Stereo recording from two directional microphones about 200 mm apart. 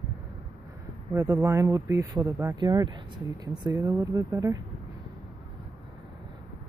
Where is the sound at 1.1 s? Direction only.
15° right (ahead or behind).